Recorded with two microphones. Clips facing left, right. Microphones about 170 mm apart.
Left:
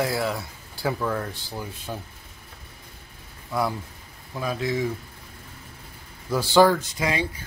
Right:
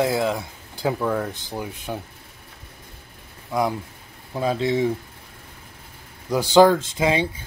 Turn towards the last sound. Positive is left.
turn(degrees=-25)  # may be behind; listen again after turning